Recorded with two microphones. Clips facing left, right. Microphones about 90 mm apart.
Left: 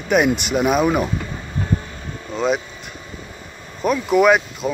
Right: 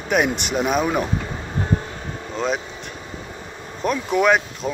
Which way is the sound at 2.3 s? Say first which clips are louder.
Left 4 dB; centre (ahead or behind).